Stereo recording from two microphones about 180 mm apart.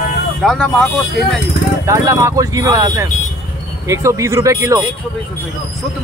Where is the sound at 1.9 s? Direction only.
15° right (ahead or behind).